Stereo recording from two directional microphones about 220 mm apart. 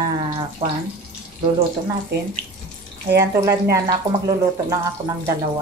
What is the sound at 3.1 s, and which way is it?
A woman's voice, 15° right (ahead or behind).